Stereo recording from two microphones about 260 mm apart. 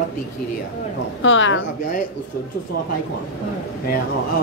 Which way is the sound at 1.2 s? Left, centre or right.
Left.